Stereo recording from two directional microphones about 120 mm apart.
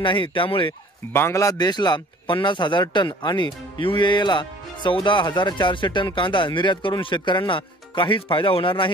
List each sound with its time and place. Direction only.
0.0 s speech: 45° left (ahead or behind)
1.1 s speech: 20° left (ahead or behind); by 8.9 s 45° left (ahead or behind)